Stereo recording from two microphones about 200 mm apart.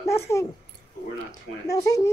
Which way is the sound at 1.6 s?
15° left (ahead or behind).